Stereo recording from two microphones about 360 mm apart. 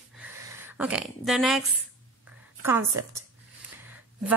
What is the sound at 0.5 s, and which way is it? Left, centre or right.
Speech, centre.